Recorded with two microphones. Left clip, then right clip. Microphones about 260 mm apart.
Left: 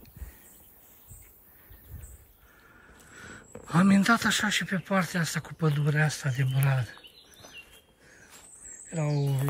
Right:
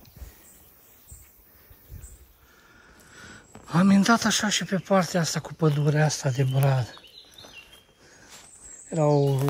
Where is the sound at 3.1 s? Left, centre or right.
Centre.